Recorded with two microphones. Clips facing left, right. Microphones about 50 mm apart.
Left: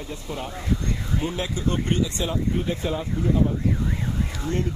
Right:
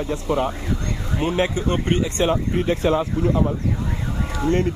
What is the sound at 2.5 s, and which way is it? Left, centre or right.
Speech, right.